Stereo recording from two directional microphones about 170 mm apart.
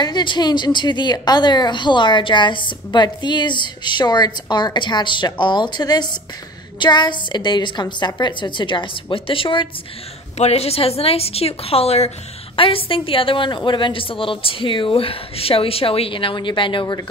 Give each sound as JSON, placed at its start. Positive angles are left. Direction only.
{"t": 0.0, "sound": "a woman's voice", "side_deg": 25}